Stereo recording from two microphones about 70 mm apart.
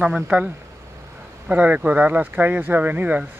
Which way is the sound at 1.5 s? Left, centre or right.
Right.